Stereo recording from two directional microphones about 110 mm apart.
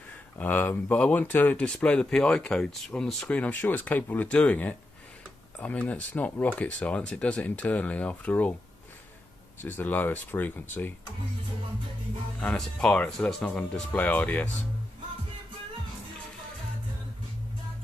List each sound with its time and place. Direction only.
0.4 s speech: 15° left (ahead or behind)
9.6 s speech: 15° left (ahead or behind)
12.4 s speech: 10° left (ahead or behind)